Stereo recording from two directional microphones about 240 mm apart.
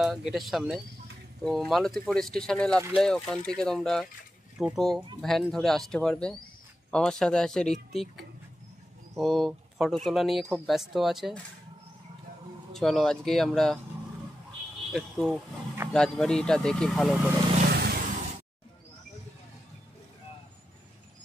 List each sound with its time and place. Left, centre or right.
0.0 s speech: centre
12.7 s speech: centre
14.9 s speech: centre
17.6 s vehicle: right